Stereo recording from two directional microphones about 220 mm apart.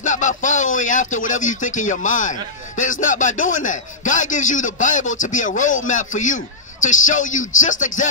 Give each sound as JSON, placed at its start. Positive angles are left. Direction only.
{"t": 0.0, "sound": "speech", "side_deg": 35}